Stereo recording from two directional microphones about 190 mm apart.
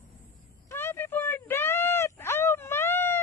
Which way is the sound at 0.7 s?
10° left (ahead or behind).